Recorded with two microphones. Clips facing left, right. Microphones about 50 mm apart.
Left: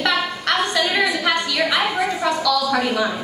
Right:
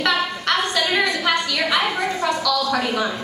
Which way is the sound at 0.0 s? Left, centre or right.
Centre.